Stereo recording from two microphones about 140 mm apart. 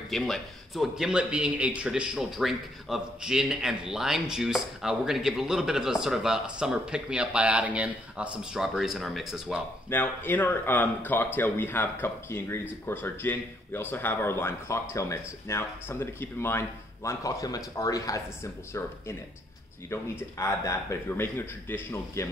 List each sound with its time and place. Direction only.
0.1 s speech: centre (ahead or behind)
9.8 s speech: 15° left (ahead or behind)